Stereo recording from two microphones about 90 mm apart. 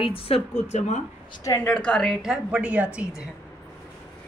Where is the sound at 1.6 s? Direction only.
10° left (ahead or behind).